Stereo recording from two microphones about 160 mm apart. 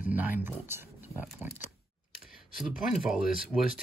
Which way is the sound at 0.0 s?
10° right (ahead or behind).